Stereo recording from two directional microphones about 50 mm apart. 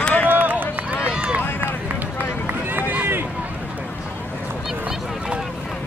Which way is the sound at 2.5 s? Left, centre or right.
Right.